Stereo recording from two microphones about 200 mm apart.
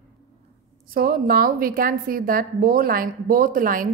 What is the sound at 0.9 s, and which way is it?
A woman's voice, 50° right (ahead or behind).